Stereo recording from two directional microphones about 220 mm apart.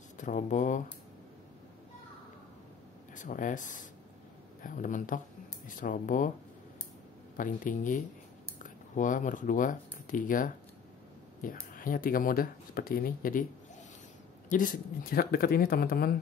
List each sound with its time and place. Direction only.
0.2 s speech: 35° left (ahead or behind)
3.2 s speech: 35° left (ahead or behind)
7.3 s speech: 35° left (ahead or behind)
11.7 s speech: 40° left (ahead or behind)
14.5 s speech: 40° left (ahead or behind)